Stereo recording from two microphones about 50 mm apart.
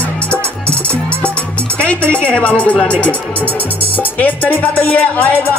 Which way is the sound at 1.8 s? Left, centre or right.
Left.